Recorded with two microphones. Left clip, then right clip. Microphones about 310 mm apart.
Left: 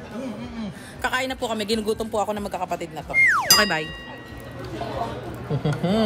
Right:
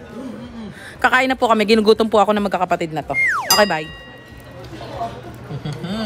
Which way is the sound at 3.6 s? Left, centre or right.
Centre.